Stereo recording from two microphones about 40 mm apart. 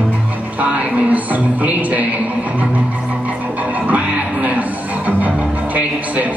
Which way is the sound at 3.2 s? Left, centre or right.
Right.